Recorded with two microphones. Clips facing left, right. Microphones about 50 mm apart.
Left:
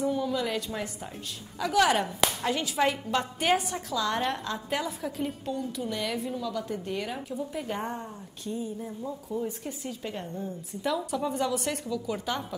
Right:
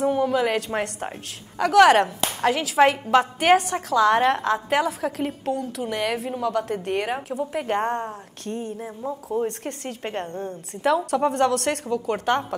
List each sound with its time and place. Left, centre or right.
0.0 s speech: right
0.7 s a woman's voice: right
1.6 s a woman's voice: right
2.4 s a woman's voice: right
6.3 s speech: right
11.1 s speech: right